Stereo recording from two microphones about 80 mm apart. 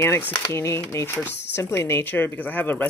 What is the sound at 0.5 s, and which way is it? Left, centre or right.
Speech, left.